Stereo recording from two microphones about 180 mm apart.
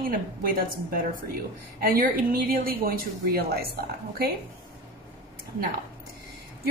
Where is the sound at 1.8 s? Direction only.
55° right (ahead or behind).